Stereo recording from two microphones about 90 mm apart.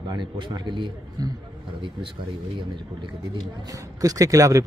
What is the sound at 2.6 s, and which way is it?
Speech, 60° right (ahead or behind).